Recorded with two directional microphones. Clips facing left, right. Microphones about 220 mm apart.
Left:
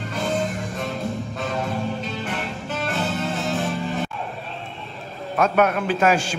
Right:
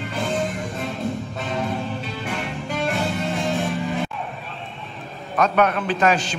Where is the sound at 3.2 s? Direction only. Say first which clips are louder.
Right 1 dB; centre (ahead or behind).